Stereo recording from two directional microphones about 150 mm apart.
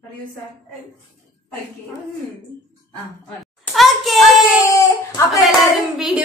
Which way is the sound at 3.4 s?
Centre (ahead or behind).